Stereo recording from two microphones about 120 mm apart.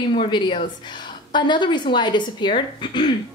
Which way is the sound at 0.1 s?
45° left (ahead or behind).